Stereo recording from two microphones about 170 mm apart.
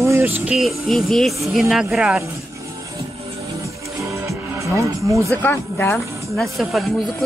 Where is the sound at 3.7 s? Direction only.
15° right (ahead or behind).